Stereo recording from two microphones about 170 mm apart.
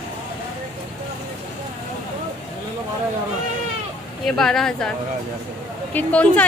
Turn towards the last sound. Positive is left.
turn(degrees=10)  # may be behind; listen again after turning